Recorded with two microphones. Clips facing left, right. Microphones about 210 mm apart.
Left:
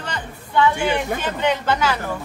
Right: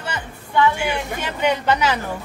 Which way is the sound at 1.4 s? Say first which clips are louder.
Right 2 dB; 15° right (ahead or behind).